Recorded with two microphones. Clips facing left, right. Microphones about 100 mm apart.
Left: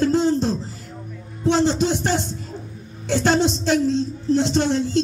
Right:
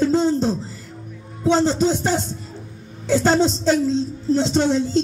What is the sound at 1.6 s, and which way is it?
Music, 60° left (ahead or behind).